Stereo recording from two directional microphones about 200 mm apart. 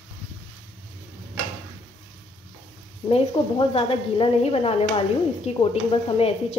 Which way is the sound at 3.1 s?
30° left (ahead or behind).